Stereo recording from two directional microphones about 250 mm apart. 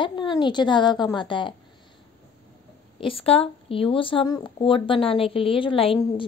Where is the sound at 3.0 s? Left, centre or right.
Left.